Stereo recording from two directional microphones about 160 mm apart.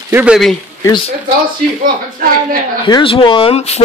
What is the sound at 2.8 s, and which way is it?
Speech, 30° left (ahead or behind).